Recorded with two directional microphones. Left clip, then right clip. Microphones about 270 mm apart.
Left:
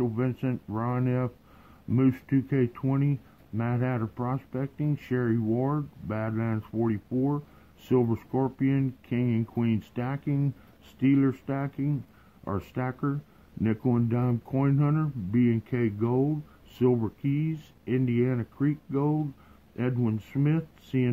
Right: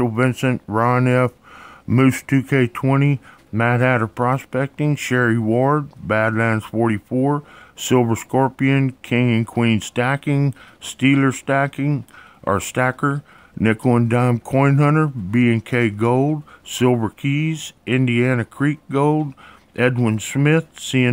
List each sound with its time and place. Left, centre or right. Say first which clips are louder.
0.0 s speech: right 11 dB; right